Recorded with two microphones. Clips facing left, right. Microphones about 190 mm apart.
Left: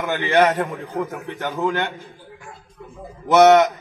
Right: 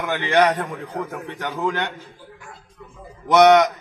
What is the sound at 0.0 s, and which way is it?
A man's voice, 5° left (ahead or behind).